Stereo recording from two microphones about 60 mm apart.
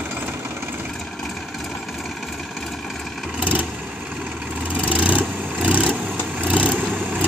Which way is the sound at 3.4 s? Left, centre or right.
Right.